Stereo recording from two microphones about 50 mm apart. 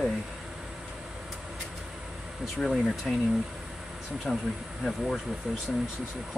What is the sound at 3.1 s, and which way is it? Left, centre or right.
Speech, centre.